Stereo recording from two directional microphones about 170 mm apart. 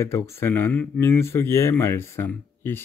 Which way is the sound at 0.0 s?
15° left (ahead or behind).